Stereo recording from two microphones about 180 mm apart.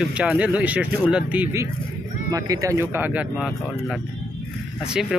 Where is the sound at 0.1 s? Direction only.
5° right (ahead or behind).